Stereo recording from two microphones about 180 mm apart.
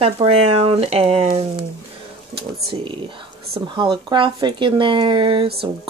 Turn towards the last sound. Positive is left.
turn(degrees=-30)  # may be behind; listen again after turning